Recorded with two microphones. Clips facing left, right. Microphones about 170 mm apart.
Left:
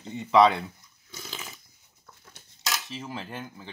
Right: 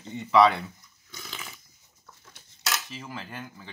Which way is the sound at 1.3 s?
20° left (ahead or behind).